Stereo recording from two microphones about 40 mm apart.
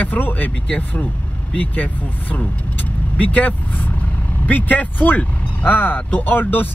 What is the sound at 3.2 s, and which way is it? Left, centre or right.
Speech, left.